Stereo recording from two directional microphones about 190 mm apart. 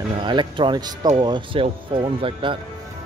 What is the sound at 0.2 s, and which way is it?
Speech, 25° right (ahead or behind).